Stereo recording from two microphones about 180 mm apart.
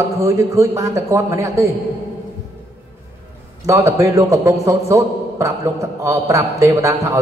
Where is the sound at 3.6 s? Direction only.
15° right (ahead or behind).